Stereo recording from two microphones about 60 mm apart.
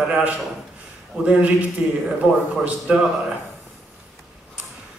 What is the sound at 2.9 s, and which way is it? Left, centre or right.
Speech, right.